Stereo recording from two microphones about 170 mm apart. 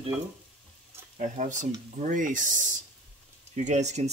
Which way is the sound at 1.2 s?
45° right (ahead or behind).